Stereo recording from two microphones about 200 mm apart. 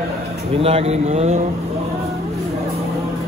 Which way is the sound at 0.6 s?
30° right (ahead or behind).